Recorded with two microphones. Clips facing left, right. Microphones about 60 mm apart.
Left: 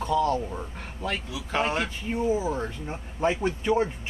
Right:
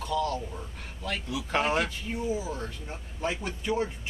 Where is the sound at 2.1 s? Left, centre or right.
Left.